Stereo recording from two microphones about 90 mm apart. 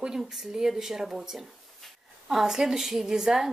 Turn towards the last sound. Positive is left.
turn(degrees=-5)  # may be behind; listen again after turning